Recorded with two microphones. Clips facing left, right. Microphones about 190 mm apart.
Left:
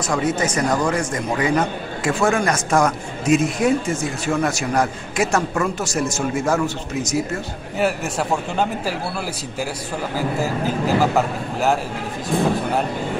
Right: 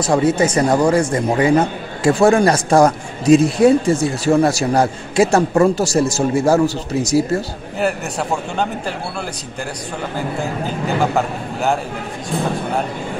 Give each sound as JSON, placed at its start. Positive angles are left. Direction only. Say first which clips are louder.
{"t": 0.0, "sound": "a man's voice", "louder": "right 6 dB", "side_deg": -30}
{"t": 7.8, "sound": "speech", "louder": "right 1 dB", "side_deg": 0}
{"t": 10.1, "sound": "speech", "louder": "left 1 dB", "side_deg": 5}